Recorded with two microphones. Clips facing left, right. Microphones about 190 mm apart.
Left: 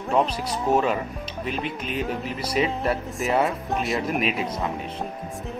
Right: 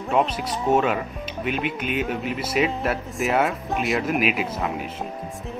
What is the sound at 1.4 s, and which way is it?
Speech, 30° left (ahead or behind).